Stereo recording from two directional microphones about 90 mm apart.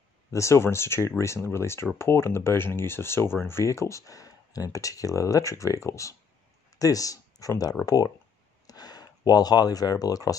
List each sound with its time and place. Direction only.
0.3 s speech: 30° left (ahead or behind)